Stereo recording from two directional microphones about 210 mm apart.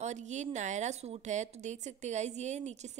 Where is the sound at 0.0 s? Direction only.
35° right (ahead or behind).